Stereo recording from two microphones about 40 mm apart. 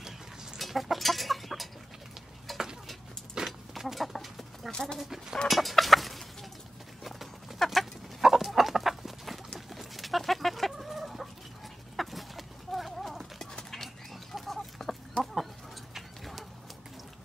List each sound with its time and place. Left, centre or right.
0.6 s chicken: centre
2.5 s a sound: centre
3.4 s chicken: centre
4.6 s a sound: centre
4.9 s speech: centre
5.5 s chicken: centre
7.0 s clip-clop: centre
8.2 s chicken: centre
15.9 s a sound: centre